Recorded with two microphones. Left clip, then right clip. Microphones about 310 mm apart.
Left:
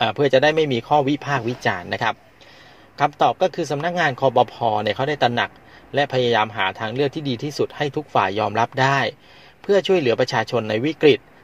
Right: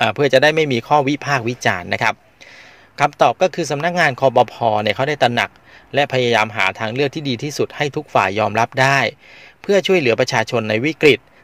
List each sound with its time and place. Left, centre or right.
0.0 s speech: right